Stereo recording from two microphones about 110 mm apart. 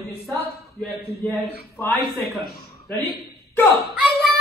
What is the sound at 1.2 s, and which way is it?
Speech, 10° left (ahead or behind).